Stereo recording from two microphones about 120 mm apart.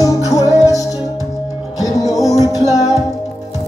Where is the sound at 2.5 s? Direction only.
30° left (ahead or behind).